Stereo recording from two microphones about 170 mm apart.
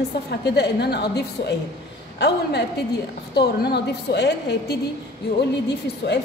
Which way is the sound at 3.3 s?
75° left (ahead or behind).